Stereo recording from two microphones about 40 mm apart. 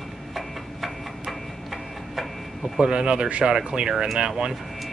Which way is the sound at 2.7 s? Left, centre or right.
Right.